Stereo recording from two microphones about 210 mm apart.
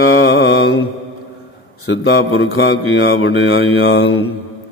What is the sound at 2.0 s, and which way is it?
Mantra, 70° left (ahead or behind).